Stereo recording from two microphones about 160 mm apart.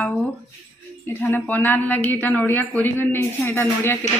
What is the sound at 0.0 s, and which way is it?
Music, 10° left (ahead or behind).